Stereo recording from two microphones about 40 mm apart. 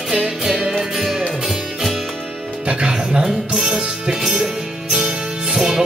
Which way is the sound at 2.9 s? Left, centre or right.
Centre.